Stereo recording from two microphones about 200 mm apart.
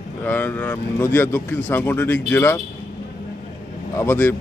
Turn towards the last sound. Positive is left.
turn(degrees=10)  # may be behind; listen again after turning